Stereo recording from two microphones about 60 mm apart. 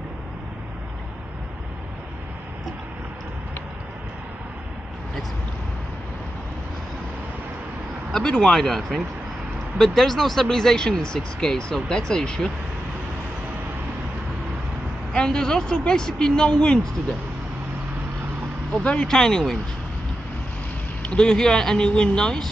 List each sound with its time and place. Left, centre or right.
8.1 s speech: centre
15.1 s speech: centre
18.7 s speech: centre
21.0 s speech: centre